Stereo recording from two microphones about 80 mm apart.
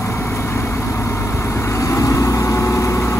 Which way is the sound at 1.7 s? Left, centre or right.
Left.